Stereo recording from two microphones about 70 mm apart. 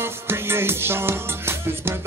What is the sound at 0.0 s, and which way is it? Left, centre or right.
Music, right.